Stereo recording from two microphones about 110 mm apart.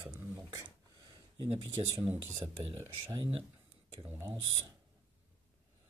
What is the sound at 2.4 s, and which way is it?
Speech, 25° right (ahead or behind).